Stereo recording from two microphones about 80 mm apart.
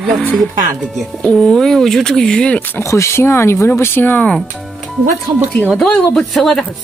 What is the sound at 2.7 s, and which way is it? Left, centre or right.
Speech, left.